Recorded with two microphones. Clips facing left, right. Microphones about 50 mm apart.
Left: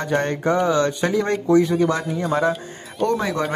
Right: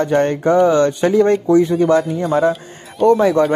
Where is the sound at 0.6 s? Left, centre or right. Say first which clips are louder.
Right 6 dB; right.